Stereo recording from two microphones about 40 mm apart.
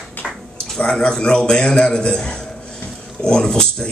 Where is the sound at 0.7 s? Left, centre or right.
Centre.